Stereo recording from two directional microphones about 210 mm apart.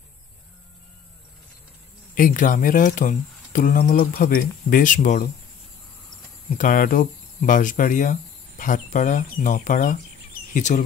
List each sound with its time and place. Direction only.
2.1 s speech: 40° left (ahead or behind)
6.6 s speech: 40° left (ahead or behind)